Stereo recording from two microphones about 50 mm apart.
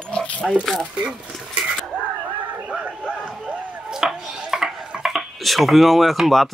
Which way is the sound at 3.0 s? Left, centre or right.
Centre.